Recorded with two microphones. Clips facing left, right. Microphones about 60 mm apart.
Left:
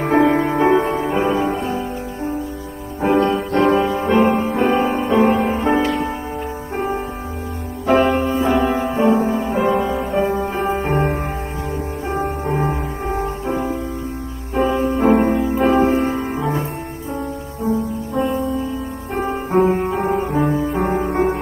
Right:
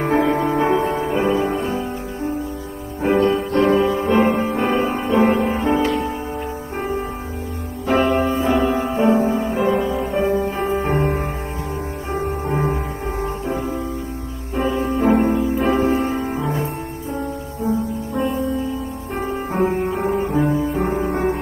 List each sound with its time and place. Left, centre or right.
0.0 s music: left
3.0 s music: left
7.8 s music: left
14.5 s music: left
15.0 s music: left
19.1 s music: left